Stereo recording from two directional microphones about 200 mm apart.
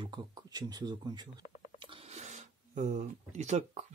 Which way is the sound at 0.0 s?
20° right (ahead or behind).